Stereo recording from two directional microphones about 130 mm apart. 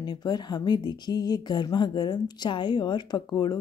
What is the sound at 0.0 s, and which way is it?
Speech, 30° left (ahead or behind).